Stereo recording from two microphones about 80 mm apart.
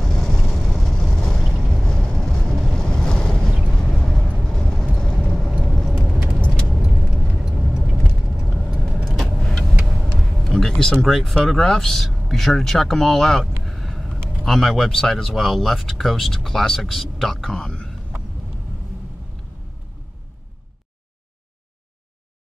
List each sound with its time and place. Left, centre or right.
0.0 s vehicle: centre
6.2 s keys jangling: right
7.0 s vehicle: centre
8.7 s vehicle: centre
11.3 s speech: centre